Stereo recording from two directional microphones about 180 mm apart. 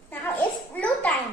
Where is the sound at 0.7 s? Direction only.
10° left (ahead or behind).